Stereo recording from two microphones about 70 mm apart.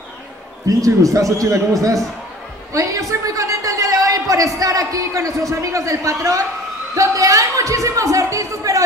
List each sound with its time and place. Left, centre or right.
0.7 s a man's voice: right
2.7 s a sound: right
4.6 s a man's voice: right